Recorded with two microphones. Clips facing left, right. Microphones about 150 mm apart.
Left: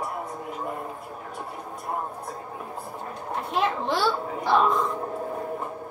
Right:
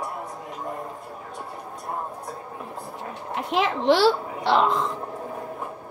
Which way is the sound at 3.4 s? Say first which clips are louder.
Right 2 dB; 90° right.